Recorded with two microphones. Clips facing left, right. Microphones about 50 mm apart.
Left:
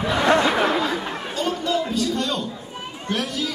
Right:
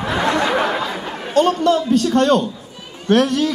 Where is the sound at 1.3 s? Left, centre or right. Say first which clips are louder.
Right 10 dB; right.